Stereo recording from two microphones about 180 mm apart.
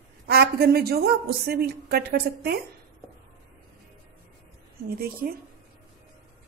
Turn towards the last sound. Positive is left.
turn(degrees=-55)  # may be behind; listen again after turning